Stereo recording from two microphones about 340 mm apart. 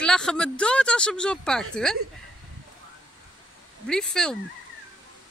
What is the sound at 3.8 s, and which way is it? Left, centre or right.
Speech, centre.